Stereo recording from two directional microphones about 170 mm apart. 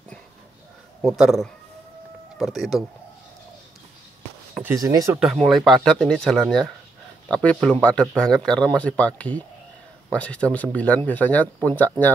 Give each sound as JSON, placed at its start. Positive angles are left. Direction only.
{"t": 1.0, "sound": "speech", "side_deg": 0}
{"t": 4.8, "sound": "speech", "side_deg": -20}
{"t": 5.2, "sound": "speech", "side_deg": 0}